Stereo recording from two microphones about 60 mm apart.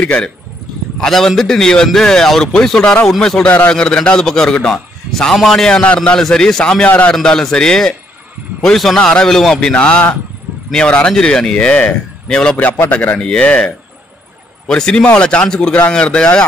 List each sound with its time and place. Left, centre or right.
0.0 s a man's voice: centre
1.0 s a man's voice: centre
3.4 s speech: left
3.7 s a man's voice: centre
9.7 s a man's voice: centre
12.5 s speech: left
13.2 s a man's voice: centre
14.8 s a man's voice: centre